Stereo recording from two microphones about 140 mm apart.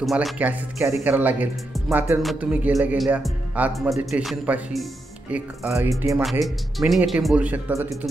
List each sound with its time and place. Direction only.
0.0 s speech: centre (ahead or behind)
0.4 s speech: 15° right (ahead or behind)
2.2 s speech: 5° right (ahead or behind)
3.7 s speech: centre (ahead or behind)
5.6 s speech: 20° right (ahead or behind)
6.4 s speech: centre (ahead or behind)